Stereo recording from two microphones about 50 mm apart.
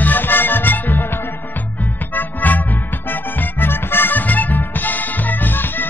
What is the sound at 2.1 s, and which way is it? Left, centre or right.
Music, left.